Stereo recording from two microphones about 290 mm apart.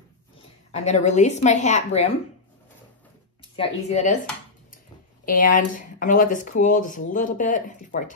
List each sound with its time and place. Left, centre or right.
0.7 s speech: left
3.5 s speech: left
5.2 s speech: left